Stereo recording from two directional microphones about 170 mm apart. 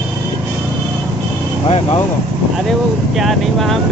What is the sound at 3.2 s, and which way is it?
Speech, centre (ahead or behind).